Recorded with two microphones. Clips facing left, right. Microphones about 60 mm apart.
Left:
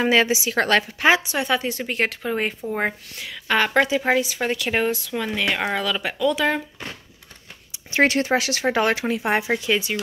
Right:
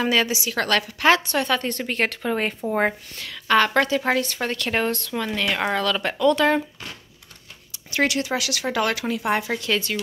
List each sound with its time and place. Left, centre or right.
0.0 s speech: left
1.1 s a woman's voice: centre
7.7 s speech: left